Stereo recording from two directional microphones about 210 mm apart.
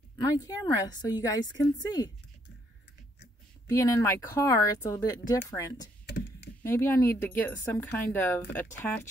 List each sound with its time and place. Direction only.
0.2 s speech: 20° left (ahead or behind)
3.6 s speech: 15° left (ahead or behind)
6.0 s a sound: 50° left (ahead or behind)
6.6 s speech: 10° left (ahead or behind)